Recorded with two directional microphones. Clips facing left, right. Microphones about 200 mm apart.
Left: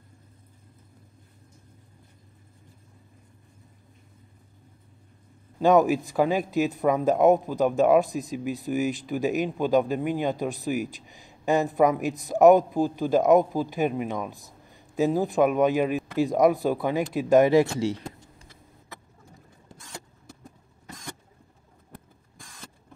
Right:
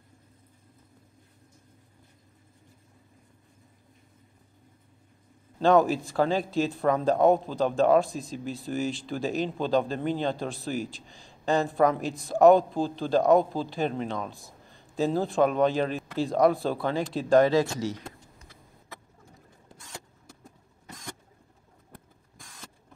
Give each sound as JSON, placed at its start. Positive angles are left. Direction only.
{"t": 5.6, "sound": "a man's voice", "side_deg": 15}